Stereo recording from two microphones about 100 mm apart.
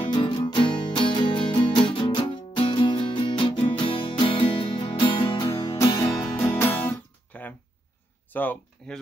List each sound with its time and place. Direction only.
0.1 s music: 50° left (ahead or behind); by 6.8 s 20° left (ahead or behind)
6.8 s guitar: 15° left (ahead or behind)
8.3 s a sound: 15° left (ahead or behind)